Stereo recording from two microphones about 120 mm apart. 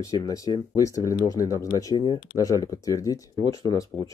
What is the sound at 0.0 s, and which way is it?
Speech, 30° left (ahead or behind).